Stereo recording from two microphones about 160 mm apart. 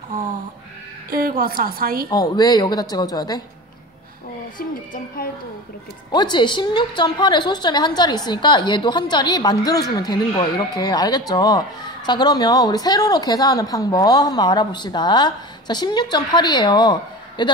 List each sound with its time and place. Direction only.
1.1 s a woman's voice: 65° right (ahead or behind)
2.0 s a woman's voice: 25° left (ahead or behind)
4.6 s speech: 60° left (ahead or behind)
6.1 s a woman's voice: 30° left (ahead or behind)